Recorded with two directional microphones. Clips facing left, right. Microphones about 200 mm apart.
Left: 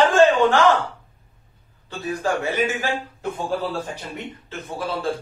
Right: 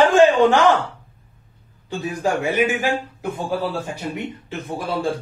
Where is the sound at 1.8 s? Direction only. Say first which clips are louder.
Right 2 dB; 15° right (ahead or behind).